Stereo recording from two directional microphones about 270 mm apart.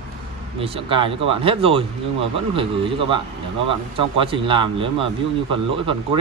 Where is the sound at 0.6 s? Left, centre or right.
Centre.